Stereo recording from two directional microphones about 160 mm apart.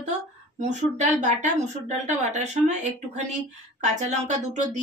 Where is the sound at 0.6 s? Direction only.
45° right (ahead or behind).